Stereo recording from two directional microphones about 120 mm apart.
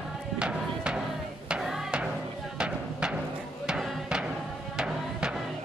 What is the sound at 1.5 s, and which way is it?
Hammer, centre (ahead or behind).